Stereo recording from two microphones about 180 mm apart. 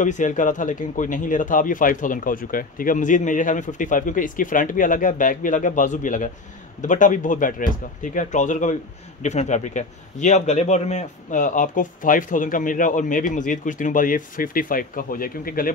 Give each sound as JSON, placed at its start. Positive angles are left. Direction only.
{"t": 0.0, "sound": "a man's voice", "side_deg": 45}